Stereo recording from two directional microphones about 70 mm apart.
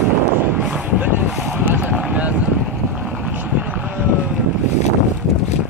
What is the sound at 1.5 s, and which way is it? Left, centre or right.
Vehicle, right.